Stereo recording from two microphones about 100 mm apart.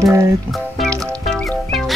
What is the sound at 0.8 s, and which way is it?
Music, centre (ahead or behind).